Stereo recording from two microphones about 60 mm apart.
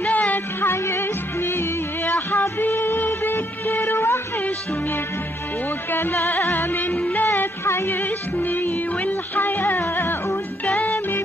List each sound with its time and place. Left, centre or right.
0.0 s music: left
0.7 s music: left
5.9 s music: left
7.3 s music: left